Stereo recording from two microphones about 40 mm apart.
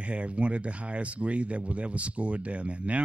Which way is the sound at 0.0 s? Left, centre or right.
Right.